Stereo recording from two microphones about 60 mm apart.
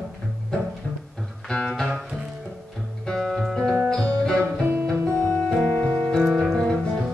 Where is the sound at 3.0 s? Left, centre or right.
Centre.